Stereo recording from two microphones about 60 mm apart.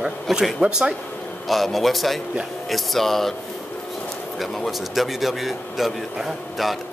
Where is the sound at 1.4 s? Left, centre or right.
Centre.